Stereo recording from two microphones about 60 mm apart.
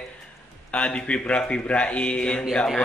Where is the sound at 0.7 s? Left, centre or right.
Centre.